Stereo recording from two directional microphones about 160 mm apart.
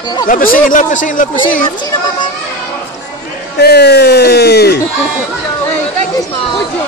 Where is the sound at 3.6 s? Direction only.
90° left.